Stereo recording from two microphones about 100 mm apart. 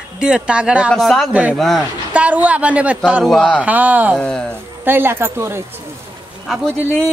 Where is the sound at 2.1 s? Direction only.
15° right (ahead or behind).